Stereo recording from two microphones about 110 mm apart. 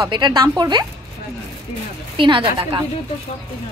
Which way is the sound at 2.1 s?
50° right (ahead or behind).